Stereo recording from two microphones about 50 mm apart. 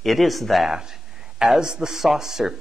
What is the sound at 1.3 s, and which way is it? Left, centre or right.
Speech, centre.